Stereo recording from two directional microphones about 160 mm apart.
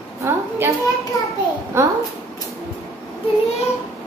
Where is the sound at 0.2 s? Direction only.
15° right (ahead or behind).